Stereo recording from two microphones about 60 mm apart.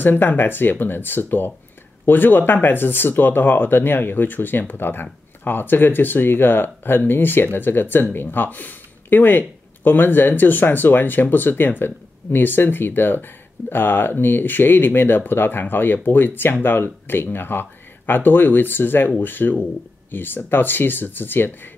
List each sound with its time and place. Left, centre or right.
0.0 s speech: left